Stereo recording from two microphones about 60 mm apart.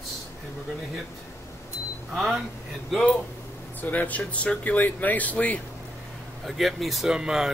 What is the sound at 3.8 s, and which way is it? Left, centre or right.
Speech, left.